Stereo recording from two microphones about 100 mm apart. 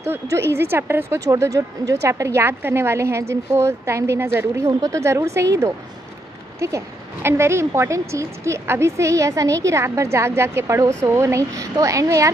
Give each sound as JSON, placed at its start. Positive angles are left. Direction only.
{"t": 0.0, "sound": "a woman's voice", "side_deg": -25}
{"t": 1.2, "sound": "a woman's voice", "side_deg": -35}